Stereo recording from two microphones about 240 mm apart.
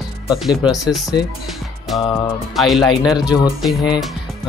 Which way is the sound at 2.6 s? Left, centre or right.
Centre.